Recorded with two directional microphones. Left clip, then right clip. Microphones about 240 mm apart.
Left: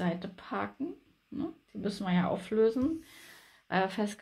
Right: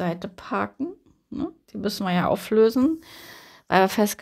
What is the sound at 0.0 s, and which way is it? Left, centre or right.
Speech, right.